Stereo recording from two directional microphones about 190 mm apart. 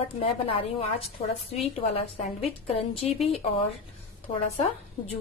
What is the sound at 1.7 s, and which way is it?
A woman's voice, 30° left (ahead or behind).